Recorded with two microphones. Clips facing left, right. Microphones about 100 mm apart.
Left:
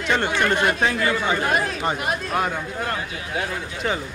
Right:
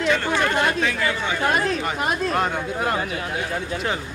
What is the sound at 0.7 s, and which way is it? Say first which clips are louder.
Speech: left 2 dB; 40° left (ahead or behind).